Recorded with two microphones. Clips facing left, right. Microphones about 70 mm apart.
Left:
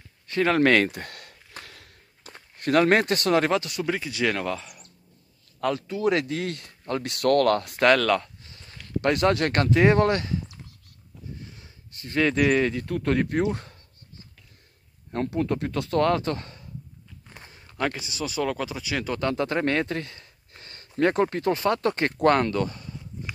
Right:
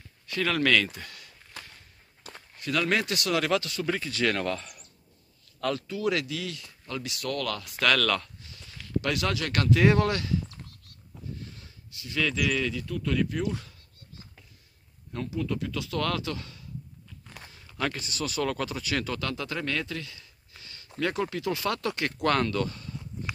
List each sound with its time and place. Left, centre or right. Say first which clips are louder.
0.3 s a sound: left 5 dB; left
1.7 s walk: left 4 dB; left
2.6 s speech: left 7 dB; left; by 4.8 s centre
5.6 s speech: left 4 dB; left
6.3 s speech: left 6 dB; left
7.8 s speech: left 5 dB; left
9.6 s speech: left 1 dB; left
11.4 s a sound: even; left
11.9 s speech: left 6 dB; left
15.2 s speech: left 5 dB; left
16.0 s speech: left 8 dB; left
17.3 s walk: left 1 dB; left
17.7 s speech: left 3 dB; centre
19.1 s speech: left 7 dB; left